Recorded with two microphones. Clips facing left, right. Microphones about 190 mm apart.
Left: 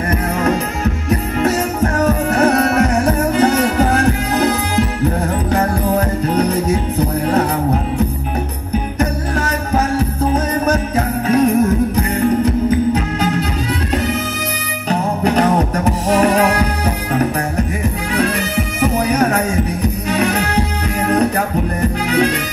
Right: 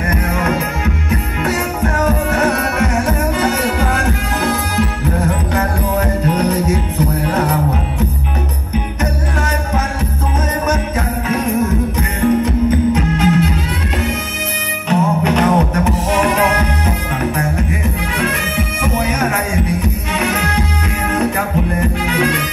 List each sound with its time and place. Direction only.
0.1 s music: 35° left (ahead or behind)
10.7 s music: 35° left (ahead or behind)
14.9 s music: 35° left (ahead or behind)
22.1 s music: 35° left (ahead or behind)